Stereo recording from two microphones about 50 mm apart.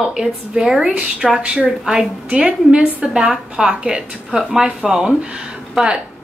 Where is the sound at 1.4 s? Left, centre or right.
Right.